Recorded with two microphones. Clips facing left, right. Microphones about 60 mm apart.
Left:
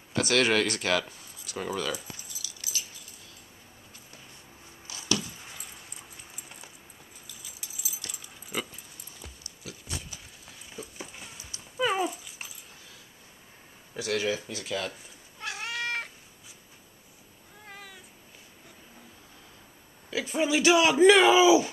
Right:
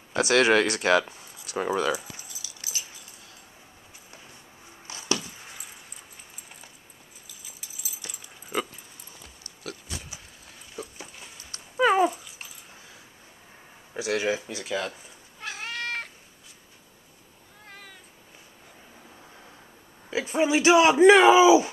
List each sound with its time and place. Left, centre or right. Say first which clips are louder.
0.1 s speech: right 4 dB; right
2.1 s keys jangling: right 1 dB; right
4.8 s a sound: right 1 dB; right
8.0 s keys jangling: right 1 dB; centre
9.6 s pig: right 6 dB; right
11.7 s dog: right 7 dB; right
13.9 s speech: right 3 dB; centre
15.3 s cat: even; centre
17.6 s cat: left 1 dB; centre
20.1 s speech: right 3 dB; right